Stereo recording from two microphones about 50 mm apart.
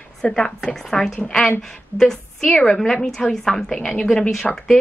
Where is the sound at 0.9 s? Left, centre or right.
Centre.